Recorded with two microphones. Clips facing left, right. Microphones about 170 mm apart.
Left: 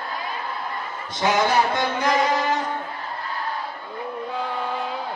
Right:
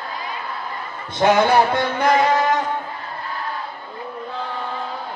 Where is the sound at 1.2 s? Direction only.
55° right (ahead or behind).